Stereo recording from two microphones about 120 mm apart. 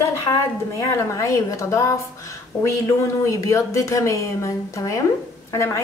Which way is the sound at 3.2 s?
25° left (ahead or behind).